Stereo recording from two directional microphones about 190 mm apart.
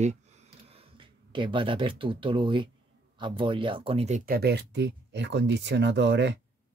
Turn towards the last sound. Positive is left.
turn(degrees=-65)  # may be behind; listen again after turning